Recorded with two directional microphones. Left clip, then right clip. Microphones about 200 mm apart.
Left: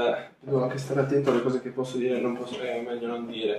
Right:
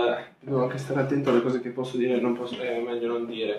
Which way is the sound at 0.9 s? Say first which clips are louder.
Left 2 dB; 20° right (ahead or behind).